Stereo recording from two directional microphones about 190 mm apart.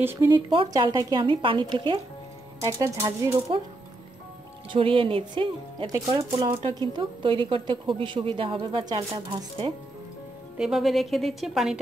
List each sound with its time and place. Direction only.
0.0 s speech: 10° right (ahead or behind)
0.6 s speech: 25° right (ahead or behind)
4.6 s speech: 30° right (ahead or behind)
10.6 s a woman's voice: centre (ahead or behind)